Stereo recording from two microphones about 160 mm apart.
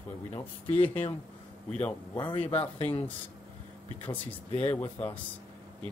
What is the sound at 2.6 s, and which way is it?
Speech, 10° left (ahead or behind).